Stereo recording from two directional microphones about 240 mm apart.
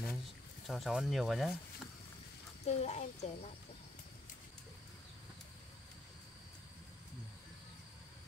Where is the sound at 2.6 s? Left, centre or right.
Left.